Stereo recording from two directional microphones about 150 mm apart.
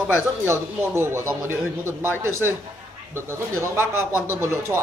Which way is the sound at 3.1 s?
15° right (ahead or behind).